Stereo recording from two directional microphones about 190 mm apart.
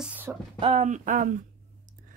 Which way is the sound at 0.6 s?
35° right (ahead or behind).